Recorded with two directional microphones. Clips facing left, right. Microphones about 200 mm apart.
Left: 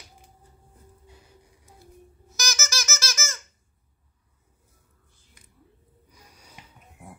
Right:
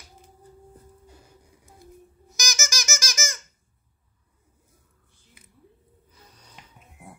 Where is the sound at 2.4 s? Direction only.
15° right (ahead or behind).